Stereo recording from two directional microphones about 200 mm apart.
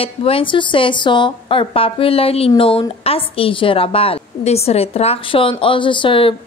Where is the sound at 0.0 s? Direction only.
30° left (ahead or behind).